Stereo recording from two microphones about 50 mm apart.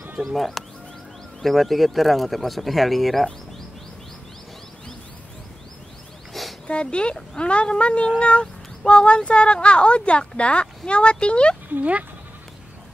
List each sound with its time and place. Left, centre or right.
0.2 s speech: centre
6.4 s a sound: centre
6.7 s speech: left